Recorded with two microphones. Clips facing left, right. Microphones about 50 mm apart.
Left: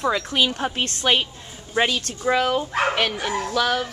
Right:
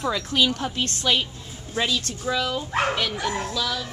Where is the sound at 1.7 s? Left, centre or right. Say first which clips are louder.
Left 4 dB; left.